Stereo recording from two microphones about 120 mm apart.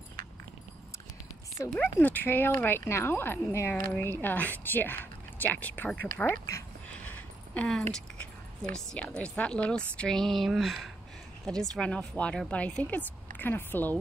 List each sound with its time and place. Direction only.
1.7 s a woman's voice: 15° left (ahead or behind)
6.9 s a sound: 15° left (ahead or behind)
7.9 s a woman's voice: 5° left (ahead or behind)